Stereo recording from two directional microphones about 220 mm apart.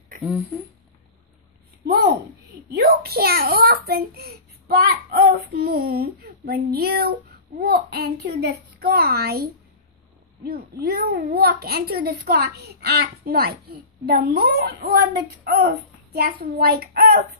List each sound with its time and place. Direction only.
0.5 s speech: centre (ahead or behind)
2.7 s a sound: 45° right (ahead or behind)
10.4 s a child's voice: 45° right (ahead or behind)